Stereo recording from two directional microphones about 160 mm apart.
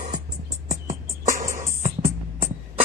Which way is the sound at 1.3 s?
50° right (ahead or behind).